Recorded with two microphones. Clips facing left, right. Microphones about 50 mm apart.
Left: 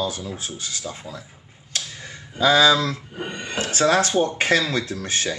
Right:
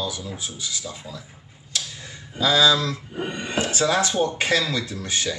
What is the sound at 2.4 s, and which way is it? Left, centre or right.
Speech, left.